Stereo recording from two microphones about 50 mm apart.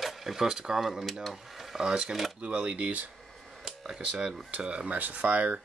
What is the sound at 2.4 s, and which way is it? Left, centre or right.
Speech, right.